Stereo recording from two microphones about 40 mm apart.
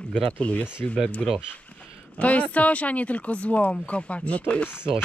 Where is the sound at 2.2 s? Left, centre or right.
Left.